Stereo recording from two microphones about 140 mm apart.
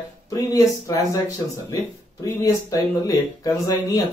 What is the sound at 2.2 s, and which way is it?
Speech, 25° left (ahead or behind).